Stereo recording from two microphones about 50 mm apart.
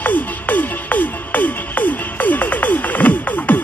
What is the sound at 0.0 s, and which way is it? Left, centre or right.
Music, left.